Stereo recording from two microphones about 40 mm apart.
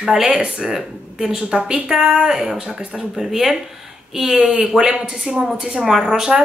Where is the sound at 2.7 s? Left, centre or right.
Right.